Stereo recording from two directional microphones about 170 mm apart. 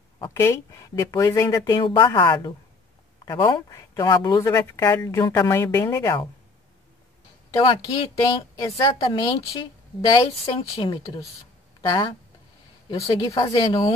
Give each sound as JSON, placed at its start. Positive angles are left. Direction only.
{"t": 0.2, "sound": "speech", "side_deg": 15}
{"t": 7.5, "sound": "speech", "side_deg": 30}
{"t": 13.5, "sound": "speech", "side_deg": 30}